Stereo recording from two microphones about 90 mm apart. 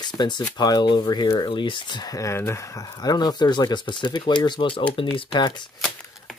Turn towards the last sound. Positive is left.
turn(degrees=50)  # may be behind; listen again after turning